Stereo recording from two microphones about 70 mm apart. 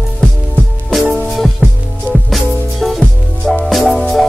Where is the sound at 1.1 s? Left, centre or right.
Centre.